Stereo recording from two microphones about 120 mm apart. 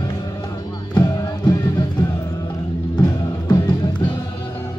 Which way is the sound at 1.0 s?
30° left (ahead or behind).